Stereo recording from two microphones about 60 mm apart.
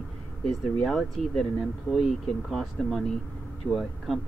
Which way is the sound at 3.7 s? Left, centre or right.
Right.